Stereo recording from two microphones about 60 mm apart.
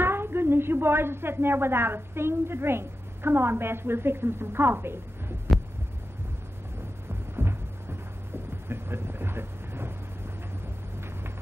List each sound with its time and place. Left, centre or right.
0.0 s speech: right
5.5 s heart sounds: centre
7.3 s a sound: right
8.6 s vehicle: right